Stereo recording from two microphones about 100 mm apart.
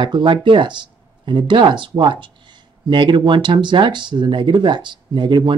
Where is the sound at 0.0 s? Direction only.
55° right (ahead or behind).